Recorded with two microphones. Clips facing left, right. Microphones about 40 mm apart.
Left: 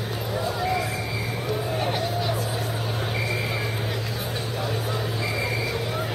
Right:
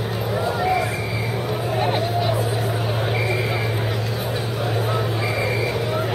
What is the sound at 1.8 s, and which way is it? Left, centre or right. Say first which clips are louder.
Music: right 5 dB; right.